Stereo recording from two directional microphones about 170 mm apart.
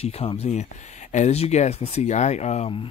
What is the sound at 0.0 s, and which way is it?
Speech, 35° left (ahead or behind).